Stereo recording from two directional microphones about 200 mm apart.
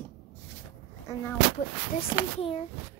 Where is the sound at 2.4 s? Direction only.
30° left (ahead or behind).